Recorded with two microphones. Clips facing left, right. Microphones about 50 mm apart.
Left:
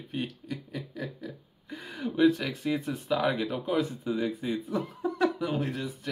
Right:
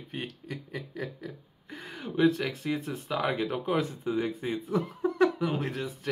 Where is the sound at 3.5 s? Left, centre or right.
Right.